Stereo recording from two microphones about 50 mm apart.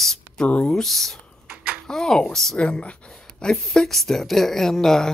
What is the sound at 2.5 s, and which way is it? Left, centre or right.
Speech, left.